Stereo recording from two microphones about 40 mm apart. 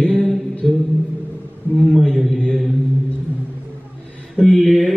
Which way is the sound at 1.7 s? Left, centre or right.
Centre.